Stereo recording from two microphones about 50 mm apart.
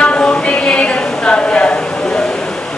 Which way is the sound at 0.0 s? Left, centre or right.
Left.